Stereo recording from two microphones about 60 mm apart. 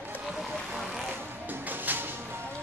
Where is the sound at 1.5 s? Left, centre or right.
Right.